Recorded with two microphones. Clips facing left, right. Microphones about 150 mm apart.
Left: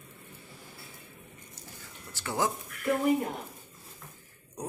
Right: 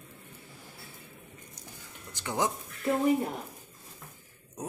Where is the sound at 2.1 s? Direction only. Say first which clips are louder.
Even; 20° right (ahead or behind).